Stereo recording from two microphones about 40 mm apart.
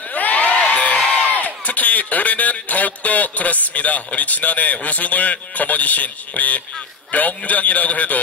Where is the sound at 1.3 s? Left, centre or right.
Left.